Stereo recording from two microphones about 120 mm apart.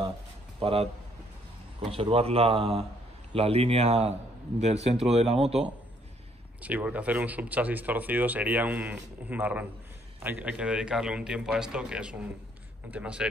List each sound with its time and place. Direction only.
0.6 s speech: 55° right (ahead or behind)
1.9 s speech: 55° right (ahead or behind)
6.6 s speech: 15° right (ahead or behind)